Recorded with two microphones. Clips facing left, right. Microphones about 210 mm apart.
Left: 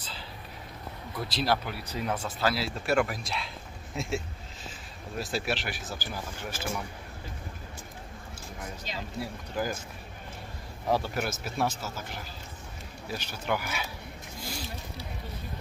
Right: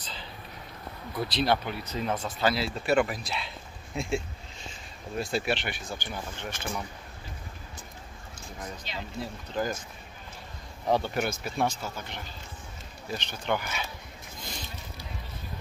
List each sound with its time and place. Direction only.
1.3 s speech: centre (ahead or behind)
8.9 s speech: 40° left (ahead or behind)
9.2 s speech: 10° left (ahead or behind)
10.9 s speech: centre (ahead or behind)
14.4 s a sound: 5° left (ahead or behind)